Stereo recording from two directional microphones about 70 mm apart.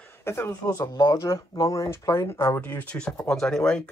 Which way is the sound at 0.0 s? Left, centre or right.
Left.